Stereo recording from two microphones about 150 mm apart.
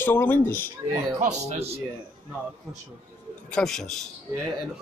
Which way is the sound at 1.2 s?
50° right (ahead or behind).